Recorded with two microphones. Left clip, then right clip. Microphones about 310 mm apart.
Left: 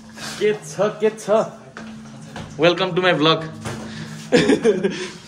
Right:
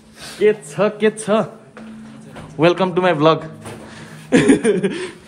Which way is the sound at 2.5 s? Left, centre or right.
Centre.